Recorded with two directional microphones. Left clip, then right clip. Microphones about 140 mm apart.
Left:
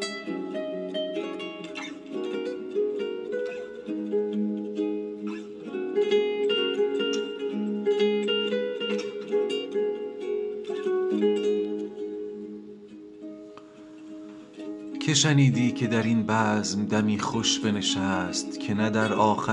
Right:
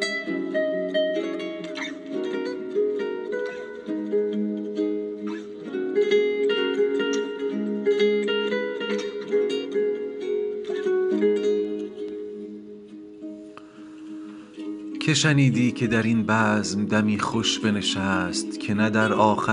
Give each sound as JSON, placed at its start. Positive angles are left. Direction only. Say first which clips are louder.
{"t": 0.0, "sound": "music", "louder": "right 6 dB", "side_deg": -35}
{"t": 15.0, "sound": "speech", "louder": "right 2 dB", "side_deg": -20}